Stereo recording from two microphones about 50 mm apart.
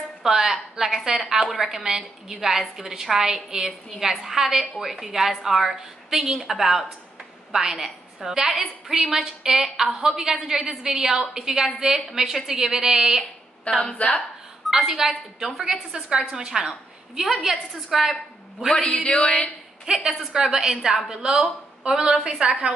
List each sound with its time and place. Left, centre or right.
0.2 s a woman's voice: centre
13.7 s a woman's voice: left
14.7 s a woman's voice: centre
15.9 s a woman's voice: centre
18.9 s a woman's voice: left
19.9 s a woman's voice: right